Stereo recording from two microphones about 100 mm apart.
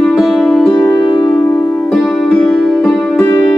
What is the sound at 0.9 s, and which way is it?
Music, 50° left (ahead or behind).